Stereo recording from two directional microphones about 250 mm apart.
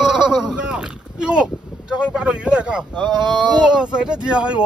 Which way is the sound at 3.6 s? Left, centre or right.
Centre.